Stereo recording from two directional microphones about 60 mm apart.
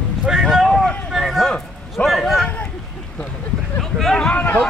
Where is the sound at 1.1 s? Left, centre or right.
Centre.